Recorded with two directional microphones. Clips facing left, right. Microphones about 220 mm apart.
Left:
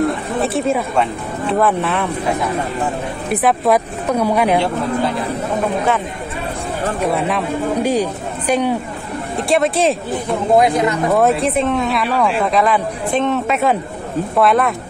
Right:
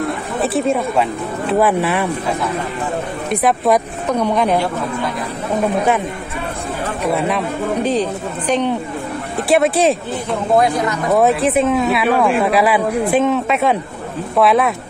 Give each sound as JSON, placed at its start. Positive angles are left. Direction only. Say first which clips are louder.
{"t": 0.4, "sound": "a sound", "louder": "right 2 dB", "side_deg": 0}
{"t": 1.5, "sound": "speech", "louder": "right 1 dB", "side_deg": -5}
{"t": 3.3, "sound": "a woman's voice", "louder": "even", "side_deg": 0}
{"t": 7.1, "sound": "speech", "louder": "right 3 dB", "side_deg": 0}
{"t": 7.8, "sound": "a woman's voice", "louder": "even", "side_deg": 10}
{"t": 9.5, "sound": "speech", "louder": "right 2 dB", "side_deg": 0}
{"t": 10.5, "sound": "speech", "louder": "left 2 dB", "side_deg": 20}
{"t": 11.1, "sound": "speech", "louder": "right 3 dB", "side_deg": 0}